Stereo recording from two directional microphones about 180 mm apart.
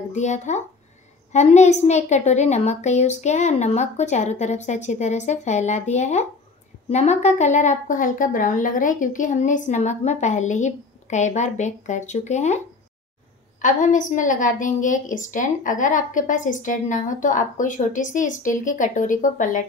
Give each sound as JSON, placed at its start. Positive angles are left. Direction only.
{"t": 0.1, "sound": "a woman's voice", "side_deg": 40}